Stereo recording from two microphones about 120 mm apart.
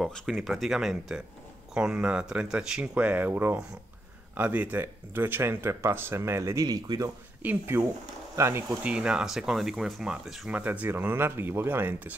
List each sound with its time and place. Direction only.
0.0 s speech: 5° left (ahead or behind); by 7.1 s 30° right (ahead or behind)
7.4 s speech: 20° right (ahead or behind)
8.8 s speech: 10° right (ahead or behind)
10.6 s speech: 15° right (ahead or behind)